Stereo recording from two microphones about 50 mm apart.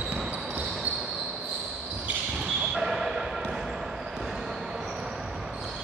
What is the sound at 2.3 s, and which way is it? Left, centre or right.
Basketball bounce, centre.